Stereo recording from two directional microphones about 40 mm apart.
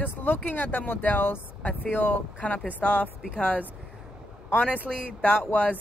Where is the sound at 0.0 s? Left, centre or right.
Left.